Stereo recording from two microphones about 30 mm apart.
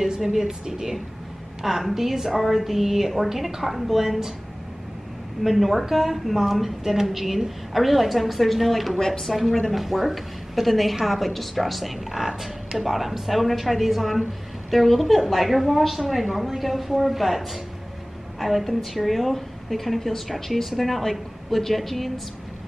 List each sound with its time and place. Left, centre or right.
0.2 s a woman's voice: centre
5.6 s a woman's voice: centre